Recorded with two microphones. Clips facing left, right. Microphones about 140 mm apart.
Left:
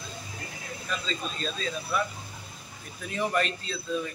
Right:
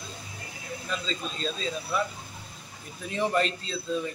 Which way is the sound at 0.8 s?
25° right (ahead or behind).